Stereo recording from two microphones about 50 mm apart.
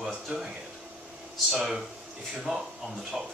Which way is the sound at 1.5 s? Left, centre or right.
Centre.